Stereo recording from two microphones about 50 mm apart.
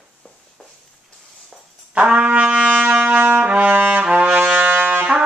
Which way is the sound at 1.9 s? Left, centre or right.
Right.